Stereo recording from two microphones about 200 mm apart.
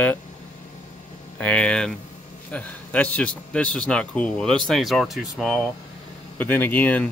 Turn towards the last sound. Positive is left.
turn(degrees=10)  # may be behind; listen again after turning